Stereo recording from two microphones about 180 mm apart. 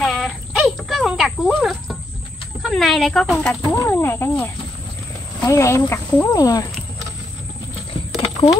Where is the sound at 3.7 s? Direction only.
10° left (ahead or behind).